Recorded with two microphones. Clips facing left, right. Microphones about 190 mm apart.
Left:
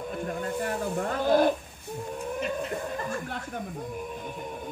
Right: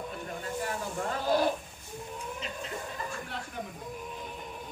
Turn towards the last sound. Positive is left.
turn(degrees=55)  # may be behind; listen again after turning